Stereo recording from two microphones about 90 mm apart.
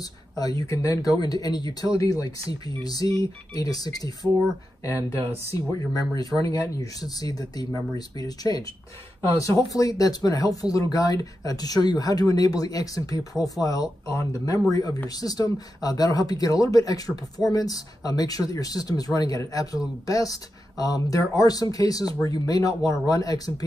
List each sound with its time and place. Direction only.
0.0 s speech: 45° left (ahead or behind)
5.5 s speech: 45° left (ahead or behind)